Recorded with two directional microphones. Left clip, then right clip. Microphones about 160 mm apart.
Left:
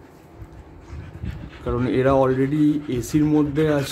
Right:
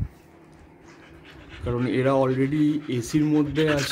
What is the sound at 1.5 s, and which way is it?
Speech, 5° right (ahead or behind).